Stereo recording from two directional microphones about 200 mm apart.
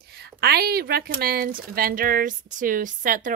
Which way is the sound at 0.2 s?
55° right (ahead or behind).